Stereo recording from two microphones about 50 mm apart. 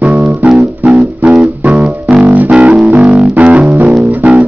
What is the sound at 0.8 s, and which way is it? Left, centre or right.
Music, right.